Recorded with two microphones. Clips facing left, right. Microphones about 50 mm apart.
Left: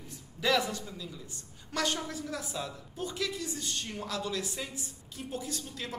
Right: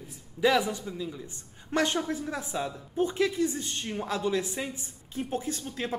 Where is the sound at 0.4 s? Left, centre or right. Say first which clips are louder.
Right 4 dB; centre.